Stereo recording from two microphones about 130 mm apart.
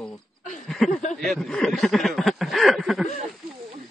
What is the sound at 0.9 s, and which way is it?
Speech, 65° left (ahead or behind).